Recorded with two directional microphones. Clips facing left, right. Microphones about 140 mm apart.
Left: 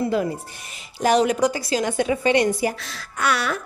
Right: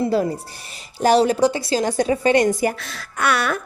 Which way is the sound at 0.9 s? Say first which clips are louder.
Right 3 dB; 35° right (ahead or behind).